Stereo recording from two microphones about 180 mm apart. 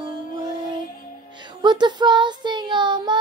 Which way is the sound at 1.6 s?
25° right (ahead or behind).